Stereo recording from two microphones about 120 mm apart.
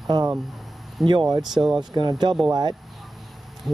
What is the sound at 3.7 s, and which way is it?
Owl, centre (ahead or behind).